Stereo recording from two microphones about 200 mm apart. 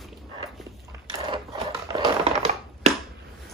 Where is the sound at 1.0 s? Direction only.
25° right (ahead or behind).